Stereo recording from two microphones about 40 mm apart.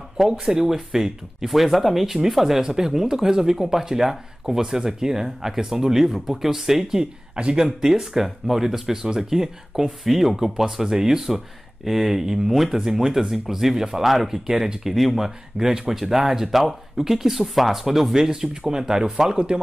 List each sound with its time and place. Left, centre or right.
0.2 s speech: centre
18.1 s speech: centre